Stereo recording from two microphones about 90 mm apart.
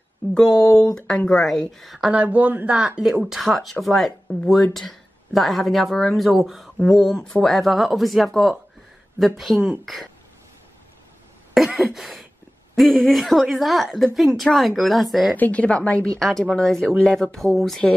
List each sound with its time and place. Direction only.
0.5 s speech: 45° left (ahead or behind)
0.9 s a woman's voice: 10° left (ahead or behind)
4.3 s speech: 20° left (ahead or behind)
4.7 s speech: centre (ahead or behind)
11.5 s a sound: centre (ahead or behind)
12.7 s speech: centre (ahead or behind)
15.3 s a woman's voice: 15° left (ahead or behind)
16.2 s speech: centre (ahead or behind)